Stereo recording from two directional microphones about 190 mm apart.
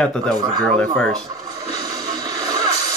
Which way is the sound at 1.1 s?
20° right (ahead or behind).